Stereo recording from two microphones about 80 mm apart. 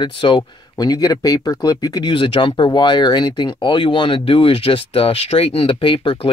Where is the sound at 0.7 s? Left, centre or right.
Left.